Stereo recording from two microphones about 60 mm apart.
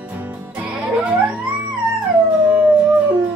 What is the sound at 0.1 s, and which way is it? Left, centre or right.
Music, right.